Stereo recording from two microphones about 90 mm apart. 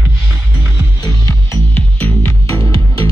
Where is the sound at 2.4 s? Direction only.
35° left (ahead or behind).